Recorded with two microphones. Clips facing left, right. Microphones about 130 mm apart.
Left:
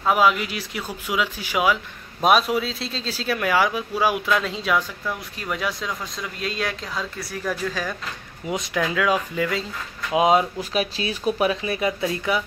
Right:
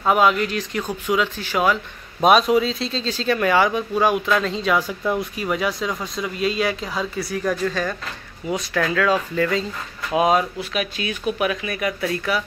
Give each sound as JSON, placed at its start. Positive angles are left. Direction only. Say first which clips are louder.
{"t": 0.0, "sound": "speech", "louder": "right 2 dB", "side_deg": 0}
{"t": 8.5, "sound": "speech", "louder": "right 2 dB", "side_deg": 15}
{"t": 10.1, "sound": "speech", "louder": "even", "side_deg": 20}
{"t": 10.6, "sound": "speech", "louder": "left 1 dB", "side_deg": 35}